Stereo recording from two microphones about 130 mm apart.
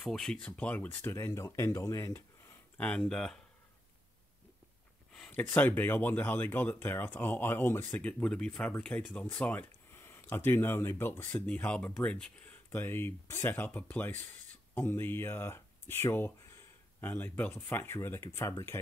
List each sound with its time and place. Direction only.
0.0 s speech: 5° left (ahead or behind); by 2.1 s 25° left (ahead or behind)
2.1 s a sound: 15° left (ahead or behind)
3.0 s speech: 5° left (ahead or behind)
5.1 s speech: 10° left (ahead or behind)